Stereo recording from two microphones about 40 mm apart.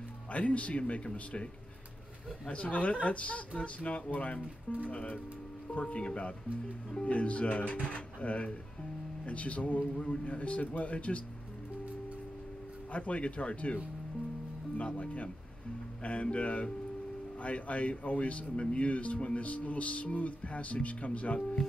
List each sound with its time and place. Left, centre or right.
0.3 s speech: left
12.9 s speech: left
14.8 s speech: left